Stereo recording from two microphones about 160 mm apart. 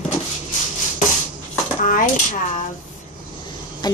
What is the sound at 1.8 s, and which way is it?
Speech, 55° left (ahead or behind).